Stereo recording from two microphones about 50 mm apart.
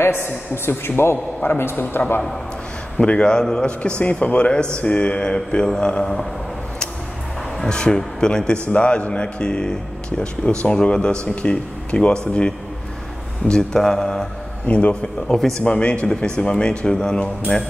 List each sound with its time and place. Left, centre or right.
0.0 s a man's voice: left
1.4 s a man's voice: left
3.1 s speech: centre
7.6 s a man's voice: centre
14.7 s speech: left
15.2 s a man's voice: centre
15.6 s a man's voice: left